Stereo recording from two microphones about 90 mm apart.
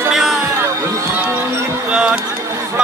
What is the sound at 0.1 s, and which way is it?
Music, 5° right (ahead or behind).